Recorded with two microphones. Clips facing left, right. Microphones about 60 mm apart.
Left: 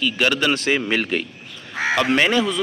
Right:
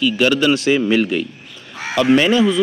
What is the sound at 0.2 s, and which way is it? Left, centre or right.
Speech, left.